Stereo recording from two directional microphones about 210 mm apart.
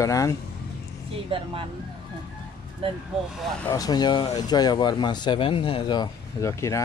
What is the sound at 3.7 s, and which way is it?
Speech, 20° left (ahead or behind).